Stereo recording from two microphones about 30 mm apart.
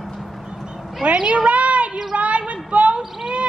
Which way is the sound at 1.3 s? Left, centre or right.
Right.